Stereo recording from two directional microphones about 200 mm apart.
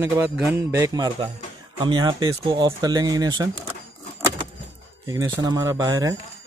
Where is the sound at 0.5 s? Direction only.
15° right (ahead or behind).